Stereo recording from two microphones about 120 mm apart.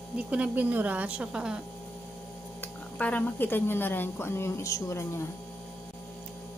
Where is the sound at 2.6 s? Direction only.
15° left (ahead or behind).